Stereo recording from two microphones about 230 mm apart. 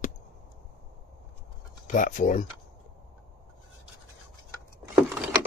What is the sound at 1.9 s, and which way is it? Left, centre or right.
Speech, left.